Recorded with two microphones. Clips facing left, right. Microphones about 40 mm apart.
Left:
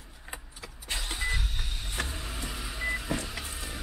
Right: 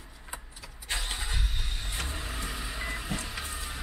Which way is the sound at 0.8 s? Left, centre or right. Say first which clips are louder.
Left 2 dB; centre.